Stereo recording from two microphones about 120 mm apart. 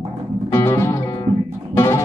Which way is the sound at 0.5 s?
25° left (ahead or behind).